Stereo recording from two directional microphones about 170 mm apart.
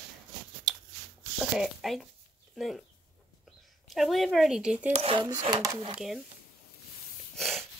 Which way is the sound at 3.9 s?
Centre (ahead or behind).